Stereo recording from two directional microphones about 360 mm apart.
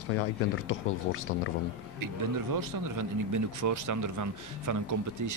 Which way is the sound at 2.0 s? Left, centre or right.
Right.